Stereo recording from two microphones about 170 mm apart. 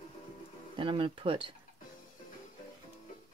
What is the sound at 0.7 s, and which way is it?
Speech, 30° right (ahead or behind).